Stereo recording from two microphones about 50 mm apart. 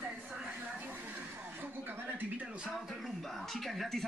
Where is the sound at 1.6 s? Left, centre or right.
Right.